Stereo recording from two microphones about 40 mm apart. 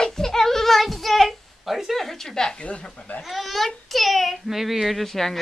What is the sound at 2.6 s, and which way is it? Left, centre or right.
Speech, left.